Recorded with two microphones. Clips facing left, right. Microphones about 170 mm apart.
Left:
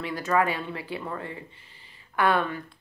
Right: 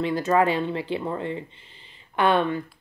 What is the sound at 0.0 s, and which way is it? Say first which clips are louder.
Speech: right 4 dB; 25° right (ahead or behind).